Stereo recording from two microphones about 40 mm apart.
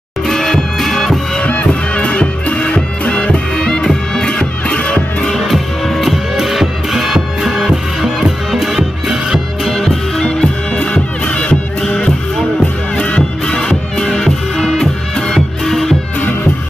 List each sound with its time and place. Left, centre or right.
0.3 s music: centre
1.7 s music: left
3.6 s music: centre
4.6 s music: left
5.5 s music: centre
9.7 s music: centre
10.2 s music: left
13.6 s music: centre